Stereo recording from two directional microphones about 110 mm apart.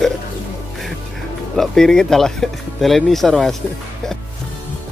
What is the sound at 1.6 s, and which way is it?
Speech, 5° left (ahead or behind).